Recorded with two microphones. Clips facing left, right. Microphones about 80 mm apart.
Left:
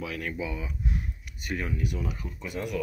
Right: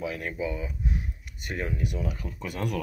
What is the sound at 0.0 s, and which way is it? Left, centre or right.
Speech, right.